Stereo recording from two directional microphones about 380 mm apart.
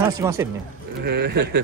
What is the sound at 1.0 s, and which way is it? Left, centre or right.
Speech, right.